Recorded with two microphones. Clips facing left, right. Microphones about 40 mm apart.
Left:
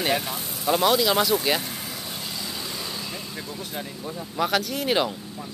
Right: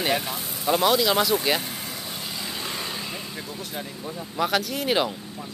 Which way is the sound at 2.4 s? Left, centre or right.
Centre.